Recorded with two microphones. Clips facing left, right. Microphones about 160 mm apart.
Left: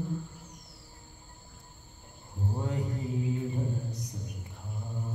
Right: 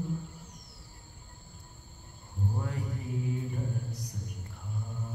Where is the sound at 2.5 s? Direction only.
20° left (ahead or behind).